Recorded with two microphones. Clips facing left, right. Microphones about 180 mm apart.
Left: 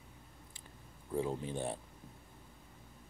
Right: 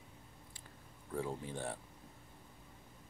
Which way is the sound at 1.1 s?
20° left (ahead or behind).